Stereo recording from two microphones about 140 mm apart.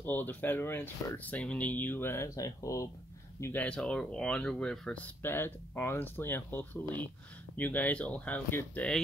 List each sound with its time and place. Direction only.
0.0 s speech: 15° left (ahead or behind)
3.6 s speech: 5° left (ahead or behind)